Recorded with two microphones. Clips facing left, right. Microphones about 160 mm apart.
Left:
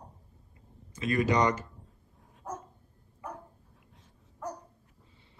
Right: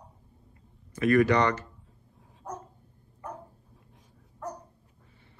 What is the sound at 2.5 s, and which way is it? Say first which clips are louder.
Dog: even; 5° left (ahead or behind).